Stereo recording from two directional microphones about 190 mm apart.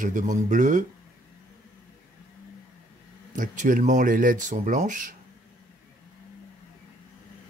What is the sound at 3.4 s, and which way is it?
Speech, 45° right (ahead or behind).